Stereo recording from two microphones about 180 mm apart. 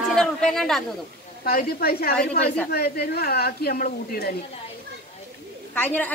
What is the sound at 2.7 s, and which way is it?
Speech, 60° left (ahead or behind).